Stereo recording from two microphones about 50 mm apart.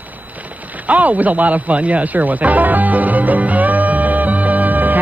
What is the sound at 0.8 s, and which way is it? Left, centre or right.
Speech, right.